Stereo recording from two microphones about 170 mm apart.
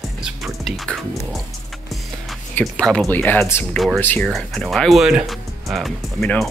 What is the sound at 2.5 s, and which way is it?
Speech, 5° left (ahead or behind).